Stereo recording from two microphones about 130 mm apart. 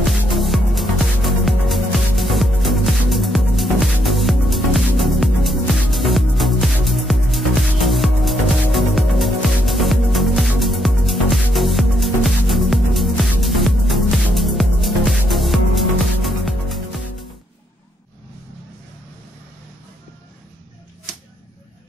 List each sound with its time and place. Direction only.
0.0 s music: centre (ahead or behind)